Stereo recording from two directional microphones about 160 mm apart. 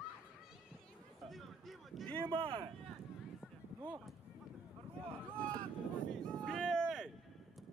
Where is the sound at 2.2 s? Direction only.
35° right (ahead or behind).